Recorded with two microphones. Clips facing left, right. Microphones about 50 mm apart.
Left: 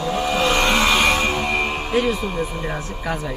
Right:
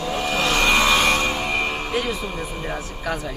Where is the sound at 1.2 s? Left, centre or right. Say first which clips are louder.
Left 2 dB; centre.